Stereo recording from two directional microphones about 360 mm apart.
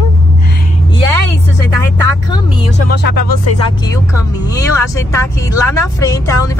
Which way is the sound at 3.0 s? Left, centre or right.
Left.